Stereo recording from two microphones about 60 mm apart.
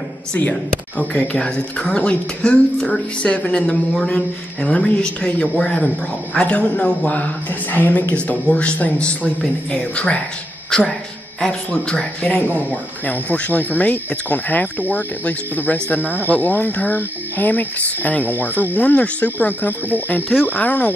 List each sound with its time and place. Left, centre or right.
1.1 s a woman's voice: left
7.7 s speech: left
11.4 s a woman's voice: centre
12.2 s speech: left